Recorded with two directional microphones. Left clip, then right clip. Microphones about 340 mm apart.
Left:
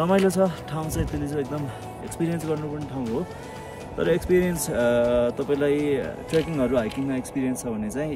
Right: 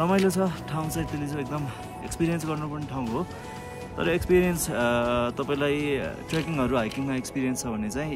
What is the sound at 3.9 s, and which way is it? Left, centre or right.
Speech, centre.